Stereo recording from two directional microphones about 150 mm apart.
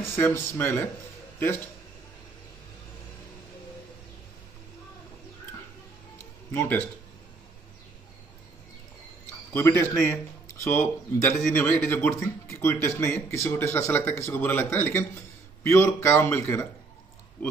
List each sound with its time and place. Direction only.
0.0 s speech: 15° left (ahead or behind)
9.5 s speech: 15° left (ahead or behind)